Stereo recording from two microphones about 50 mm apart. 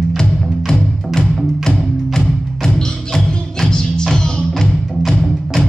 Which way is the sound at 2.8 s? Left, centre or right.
Centre.